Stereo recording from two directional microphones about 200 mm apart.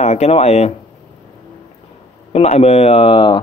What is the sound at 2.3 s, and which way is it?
Speech, 30° left (ahead or behind).